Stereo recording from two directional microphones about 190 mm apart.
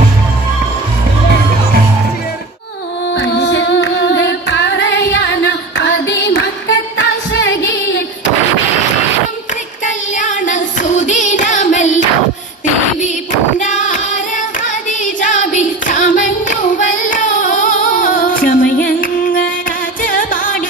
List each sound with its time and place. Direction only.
3.2 s music: 65° left (ahead or behind)
9.8 s singing: 40° left (ahead or behind)
13.6 s singing: 40° left (ahead or behind)
20.0 s music: 45° left (ahead or behind)